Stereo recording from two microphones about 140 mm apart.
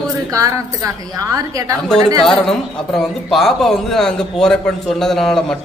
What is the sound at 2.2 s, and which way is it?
A man's voice, 5° left (ahead or behind).